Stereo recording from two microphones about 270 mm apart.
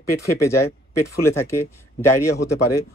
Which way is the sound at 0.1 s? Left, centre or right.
Left.